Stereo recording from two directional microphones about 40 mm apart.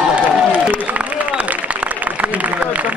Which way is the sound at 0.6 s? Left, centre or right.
Right.